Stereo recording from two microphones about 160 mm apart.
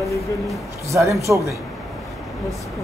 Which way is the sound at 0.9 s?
20° right (ahead or behind).